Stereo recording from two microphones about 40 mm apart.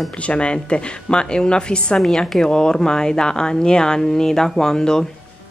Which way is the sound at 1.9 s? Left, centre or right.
Centre.